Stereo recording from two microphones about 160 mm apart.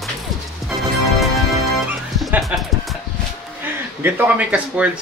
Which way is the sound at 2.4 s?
Centre (ahead or behind).